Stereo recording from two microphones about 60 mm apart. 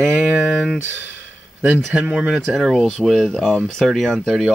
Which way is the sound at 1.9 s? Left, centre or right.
Centre.